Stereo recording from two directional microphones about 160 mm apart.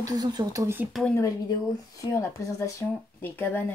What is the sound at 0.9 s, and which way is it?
Speech, 5° left (ahead or behind).